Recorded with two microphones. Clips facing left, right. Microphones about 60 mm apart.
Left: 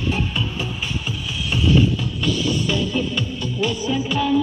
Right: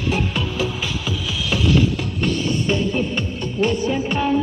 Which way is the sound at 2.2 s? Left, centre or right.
Right.